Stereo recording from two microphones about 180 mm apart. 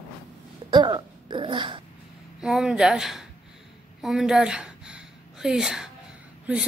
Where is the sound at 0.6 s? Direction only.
25° right (ahead or behind).